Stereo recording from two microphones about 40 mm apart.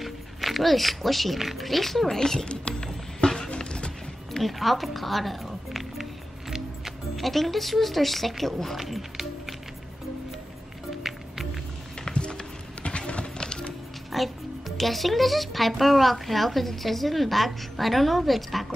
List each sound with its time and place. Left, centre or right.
0.0 s speech: centre
2.4 s speech: left
3.4 s a sound: left
4.4 s speech: centre
8.7 s music: centre
11.0 s music: centre
12.1 s music: left
14.1 s a child's voice: centre